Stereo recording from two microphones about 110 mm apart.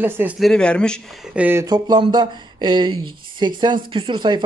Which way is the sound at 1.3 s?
15° right (ahead or behind).